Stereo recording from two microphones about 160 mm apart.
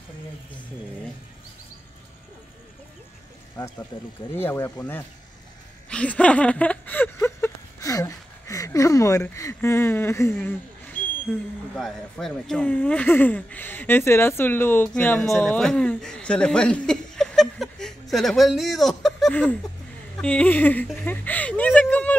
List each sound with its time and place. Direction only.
3.9 s speech: 25° left (ahead or behind)
4.4 s speech: 15° left (ahead or behind)
5.9 s a sound: 5° left (ahead or behind)
15.2 s speech: centre (ahead or behind)